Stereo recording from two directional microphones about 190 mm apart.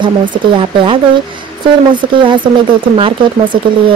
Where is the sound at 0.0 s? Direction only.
25° right (ahead or behind).